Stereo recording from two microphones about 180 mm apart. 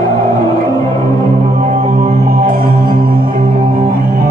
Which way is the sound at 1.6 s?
40° right (ahead or behind).